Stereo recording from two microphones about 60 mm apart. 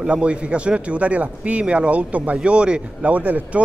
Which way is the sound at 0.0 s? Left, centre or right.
Centre.